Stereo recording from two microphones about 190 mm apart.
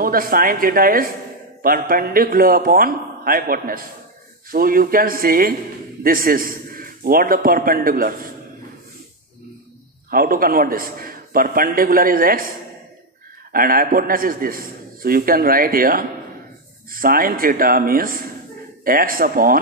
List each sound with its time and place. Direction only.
0.0 s a man's voice: 50° right (ahead or behind)
10.1 s a man's voice: 50° right (ahead or behind)